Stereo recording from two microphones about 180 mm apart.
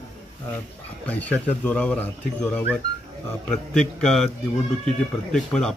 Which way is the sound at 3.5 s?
5° left (ahead or behind).